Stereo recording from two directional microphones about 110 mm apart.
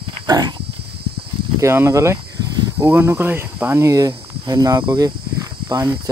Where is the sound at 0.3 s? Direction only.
40° right (ahead or behind).